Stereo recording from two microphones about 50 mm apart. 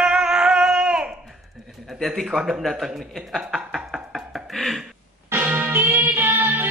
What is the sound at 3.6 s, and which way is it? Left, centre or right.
Knock, centre.